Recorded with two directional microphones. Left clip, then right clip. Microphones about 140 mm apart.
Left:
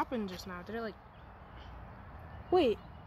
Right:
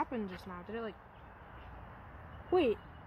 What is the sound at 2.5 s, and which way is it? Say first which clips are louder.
Speech: left 2 dB; 10° left (ahead or behind).